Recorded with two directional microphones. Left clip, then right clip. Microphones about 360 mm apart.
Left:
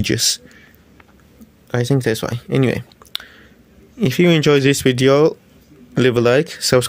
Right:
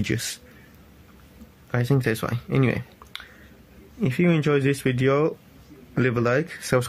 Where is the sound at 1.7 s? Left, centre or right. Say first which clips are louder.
Left 6 dB; centre.